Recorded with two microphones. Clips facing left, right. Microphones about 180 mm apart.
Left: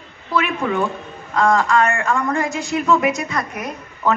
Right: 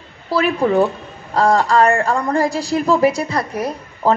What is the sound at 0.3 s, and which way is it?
A woman's voice, 35° right (ahead or behind).